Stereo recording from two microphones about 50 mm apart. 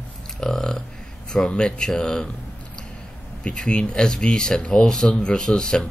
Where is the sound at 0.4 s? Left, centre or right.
Centre.